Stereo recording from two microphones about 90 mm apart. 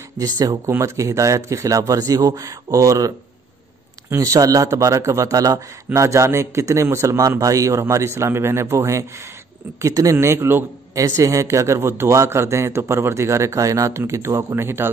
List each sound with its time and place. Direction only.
0.2 s speech: 40° right (ahead or behind)
0.7 s a man's voice: 30° right (ahead or behind)
4.1 s a man's voice: 40° right (ahead or behind)